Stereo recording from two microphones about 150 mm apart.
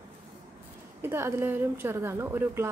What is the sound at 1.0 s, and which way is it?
A woman's voice, 15° right (ahead or behind).